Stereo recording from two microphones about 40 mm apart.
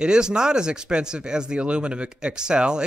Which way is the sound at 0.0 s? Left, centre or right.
Right.